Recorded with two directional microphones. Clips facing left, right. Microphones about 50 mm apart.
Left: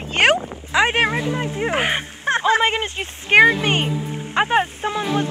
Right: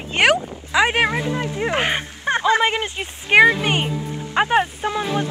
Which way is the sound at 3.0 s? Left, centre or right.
Centre.